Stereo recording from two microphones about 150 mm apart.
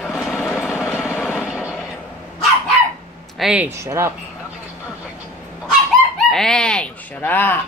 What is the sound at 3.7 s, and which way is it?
Speech, 20° right (ahead or behind).